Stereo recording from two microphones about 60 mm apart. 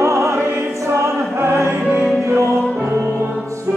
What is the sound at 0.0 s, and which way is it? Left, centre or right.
Music, right.